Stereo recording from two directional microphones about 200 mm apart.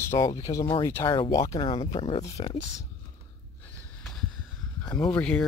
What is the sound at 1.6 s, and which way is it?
Speech, 30° left (ahead or behind).